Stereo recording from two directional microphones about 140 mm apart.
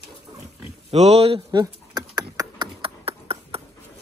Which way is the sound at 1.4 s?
30° right (ahead or behind).